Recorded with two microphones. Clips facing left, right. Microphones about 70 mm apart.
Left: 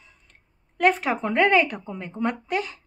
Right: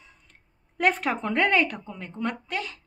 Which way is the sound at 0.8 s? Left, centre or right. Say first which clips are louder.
Left 3 dB; centre.